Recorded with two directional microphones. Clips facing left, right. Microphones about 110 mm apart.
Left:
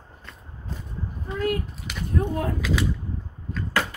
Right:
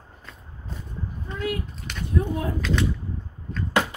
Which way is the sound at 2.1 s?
40° left (ahead or behind).